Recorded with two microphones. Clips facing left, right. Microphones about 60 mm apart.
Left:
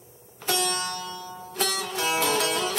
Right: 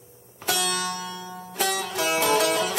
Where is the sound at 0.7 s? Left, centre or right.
Centre.